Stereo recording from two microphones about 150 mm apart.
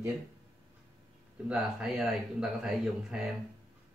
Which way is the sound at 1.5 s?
5° right (ahead or behind).